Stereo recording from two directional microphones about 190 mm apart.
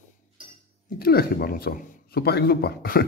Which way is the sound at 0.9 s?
50° left (ahead or behind).